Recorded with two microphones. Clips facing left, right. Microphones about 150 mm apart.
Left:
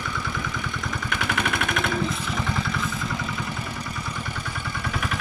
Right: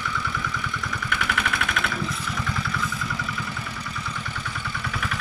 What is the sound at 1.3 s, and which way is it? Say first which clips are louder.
Vehicle: left 4 dB; 20° left (ahead or behind).